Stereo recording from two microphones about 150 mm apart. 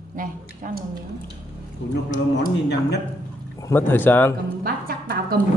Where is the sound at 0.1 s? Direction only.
65° right (ahead or behind).